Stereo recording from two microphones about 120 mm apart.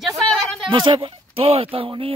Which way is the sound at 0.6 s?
40° right (ahead or behind).